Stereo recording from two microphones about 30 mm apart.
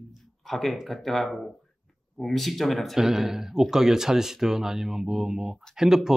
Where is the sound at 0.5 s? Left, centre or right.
Centre.